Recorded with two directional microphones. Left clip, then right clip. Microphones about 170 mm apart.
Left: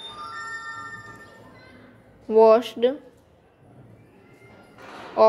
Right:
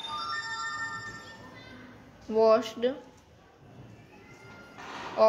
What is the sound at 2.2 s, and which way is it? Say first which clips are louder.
Speech: left 7 dB; 45° left (ahead or behind).